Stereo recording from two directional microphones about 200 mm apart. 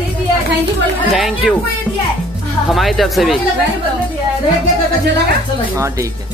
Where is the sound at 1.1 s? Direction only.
Centre (ahead or behind).